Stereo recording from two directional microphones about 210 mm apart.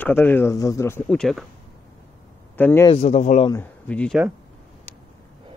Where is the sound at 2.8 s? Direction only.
30° left (ahead or behind).